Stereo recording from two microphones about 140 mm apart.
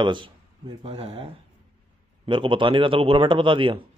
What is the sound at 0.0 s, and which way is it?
A man's voice, 35° right (ahead or behind).